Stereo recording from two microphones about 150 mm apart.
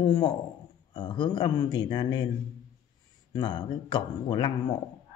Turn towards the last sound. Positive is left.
turn(degrees=35)  # may be behind; listen again after turning